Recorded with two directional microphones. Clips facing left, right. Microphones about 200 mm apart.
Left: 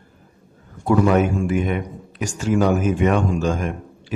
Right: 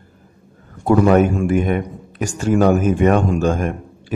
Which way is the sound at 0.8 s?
50° right (ahead or behind).